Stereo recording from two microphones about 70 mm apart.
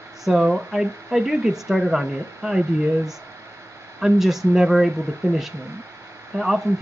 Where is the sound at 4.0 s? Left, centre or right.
Centre.